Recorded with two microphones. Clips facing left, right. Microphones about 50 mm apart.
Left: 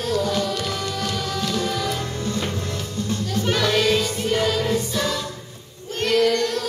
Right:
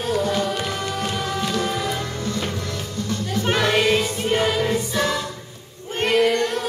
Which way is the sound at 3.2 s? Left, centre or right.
Right.